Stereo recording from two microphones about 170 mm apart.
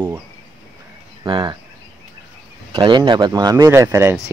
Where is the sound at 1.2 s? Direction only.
30° right (ahead or behind).